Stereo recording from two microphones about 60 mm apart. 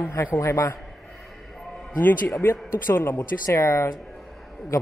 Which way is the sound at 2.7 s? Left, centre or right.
Left.